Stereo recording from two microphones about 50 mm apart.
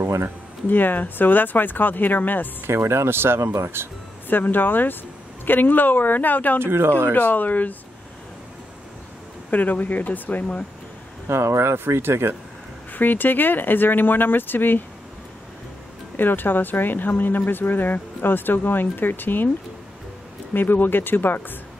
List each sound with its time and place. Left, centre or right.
0.7 s speech: left
2.6 s speech: right
4.3 s speech: left
6.6 s speech: right
7.1 s speech: left
9.5 s speech: left
11.2 s speech: right
12.9 s speech: left
16.2 s speech: left
20.5 s speech: left